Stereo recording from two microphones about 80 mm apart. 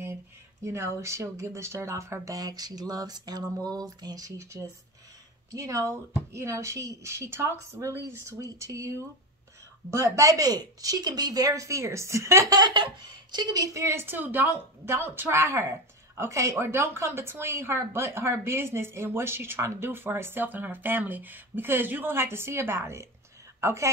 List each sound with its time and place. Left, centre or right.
0.7 s speech: right
4.6 s speech: right
5.5 s speech: right
12.4 s speech: right
12.7 s speech: right
13.9 s speech: right